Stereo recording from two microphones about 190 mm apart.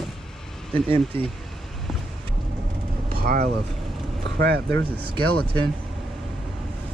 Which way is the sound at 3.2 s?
50° right (ahead or behind).